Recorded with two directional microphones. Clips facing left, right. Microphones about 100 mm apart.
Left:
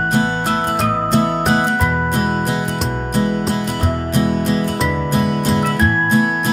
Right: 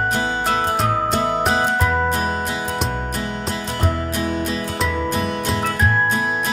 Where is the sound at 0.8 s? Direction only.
Centre (ahead or behind).